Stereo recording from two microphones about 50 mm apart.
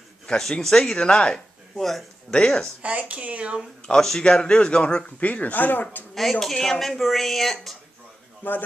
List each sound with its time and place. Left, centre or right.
0.4 s a man's voice: centre
1.8 s speech: centre
2.3 s a woman's voice: left
2.8 s speech: right
3.8 s a man's voice: centre
5.2 s speech: left
6.4 s a man's voice: centre
8.4 s speech: left